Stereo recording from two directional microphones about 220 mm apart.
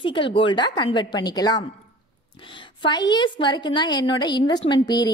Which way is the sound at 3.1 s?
20° left (ahead or behind).